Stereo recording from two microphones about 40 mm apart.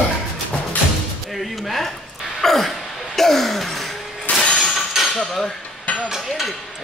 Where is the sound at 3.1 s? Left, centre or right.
Centre.